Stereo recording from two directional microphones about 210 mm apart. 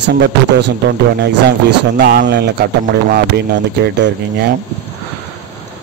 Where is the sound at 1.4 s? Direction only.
50° right (ahead or behind).